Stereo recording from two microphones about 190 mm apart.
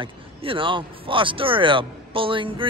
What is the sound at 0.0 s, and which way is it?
Speech, 30° right (ahead or behind).